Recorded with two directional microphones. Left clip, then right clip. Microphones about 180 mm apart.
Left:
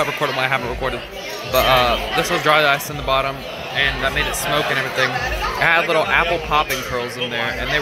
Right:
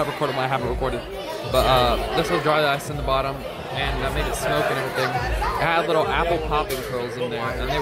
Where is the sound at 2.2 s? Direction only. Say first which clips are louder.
Left 5 dB; 5° right (ahead or behind).